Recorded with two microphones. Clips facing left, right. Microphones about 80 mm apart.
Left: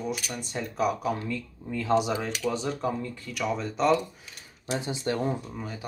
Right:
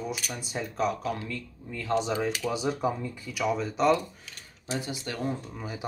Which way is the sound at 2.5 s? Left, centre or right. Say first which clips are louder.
Left 3 dB; centre.